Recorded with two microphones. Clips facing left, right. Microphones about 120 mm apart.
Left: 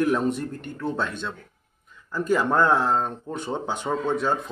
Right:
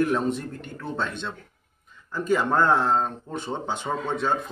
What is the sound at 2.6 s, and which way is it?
Speech, 10° left (ahead or behind).